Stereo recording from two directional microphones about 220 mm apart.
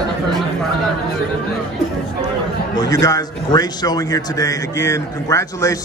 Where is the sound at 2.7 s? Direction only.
15° left (ahead or behind).